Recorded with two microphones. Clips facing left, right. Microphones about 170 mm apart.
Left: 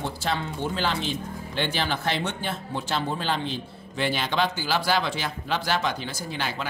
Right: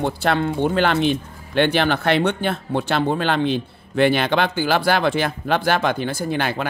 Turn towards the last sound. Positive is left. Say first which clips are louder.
# right 9 dB
turn(degrees=-60)  # may be behind; listen again after turning